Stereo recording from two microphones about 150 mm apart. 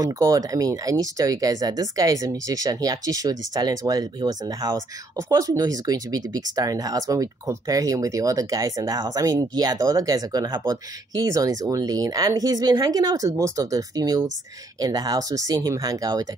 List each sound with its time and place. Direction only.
0.0 s speech: 25° right (ahead or behind)